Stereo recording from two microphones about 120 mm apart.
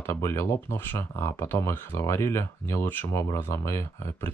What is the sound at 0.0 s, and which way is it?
Speech, 20° left (ahead or behind).